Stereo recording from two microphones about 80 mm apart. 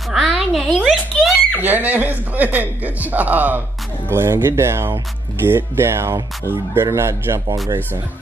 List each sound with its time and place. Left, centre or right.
0.1 s a sound: centre
1.6 s a man's voice: right
4.1 s speech: right